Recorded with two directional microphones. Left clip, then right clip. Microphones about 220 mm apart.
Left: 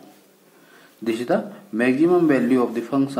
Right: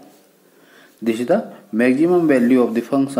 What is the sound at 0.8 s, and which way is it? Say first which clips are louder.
Speech: right 4 dB; 25° right (ahead or behind).